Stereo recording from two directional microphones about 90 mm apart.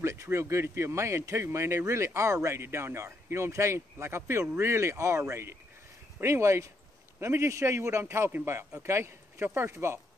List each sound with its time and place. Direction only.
0.0 s a man's voice: 35° right (ahead or behind)